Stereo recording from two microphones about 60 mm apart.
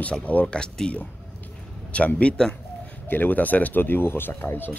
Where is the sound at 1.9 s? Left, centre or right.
Left.